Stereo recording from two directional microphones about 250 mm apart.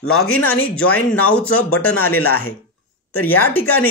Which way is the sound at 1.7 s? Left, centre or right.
Left.